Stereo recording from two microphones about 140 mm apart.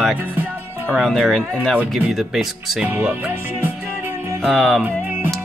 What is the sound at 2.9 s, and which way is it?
Speech, 10° right (ahead or behind).